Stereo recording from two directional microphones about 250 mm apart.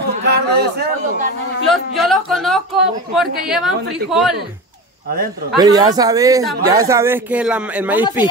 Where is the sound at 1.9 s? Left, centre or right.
Centre.